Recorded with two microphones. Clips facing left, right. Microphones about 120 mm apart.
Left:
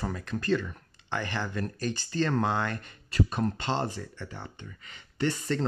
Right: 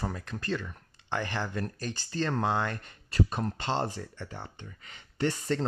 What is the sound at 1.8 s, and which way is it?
Speech, 35° right (ahead or behind).